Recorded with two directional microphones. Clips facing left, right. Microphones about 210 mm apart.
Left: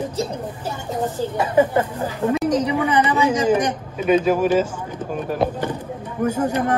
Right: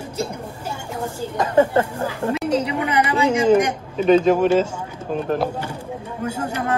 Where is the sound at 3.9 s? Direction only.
10° left (ahead or behind).